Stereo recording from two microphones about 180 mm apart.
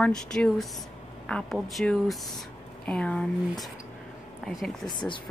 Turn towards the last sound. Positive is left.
turn(degrees=25)  # may be behind; listen again after turning